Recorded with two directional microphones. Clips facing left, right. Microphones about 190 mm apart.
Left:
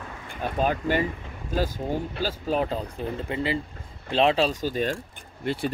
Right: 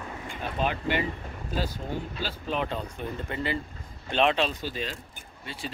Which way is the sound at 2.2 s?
40° left (ahead or behind).